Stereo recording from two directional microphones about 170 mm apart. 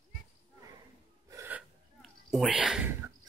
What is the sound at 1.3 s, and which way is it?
Gasp, 15° right (ahead or behind).